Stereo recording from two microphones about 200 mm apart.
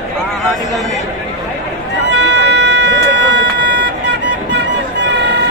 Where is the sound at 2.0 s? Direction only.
60° right (ahead or behind).